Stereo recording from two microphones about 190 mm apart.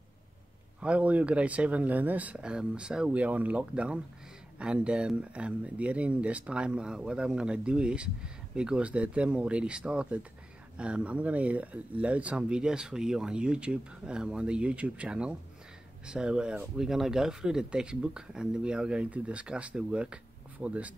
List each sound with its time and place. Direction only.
0.7 s speech: 5° right (ahead or behind)